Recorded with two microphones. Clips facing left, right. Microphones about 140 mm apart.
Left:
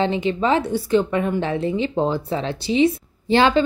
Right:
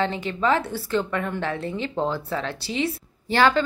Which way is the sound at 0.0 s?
20° left (ahead or behind).